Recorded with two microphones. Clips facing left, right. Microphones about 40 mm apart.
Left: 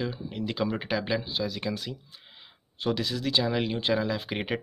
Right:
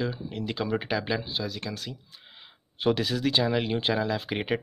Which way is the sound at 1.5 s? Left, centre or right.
Centre.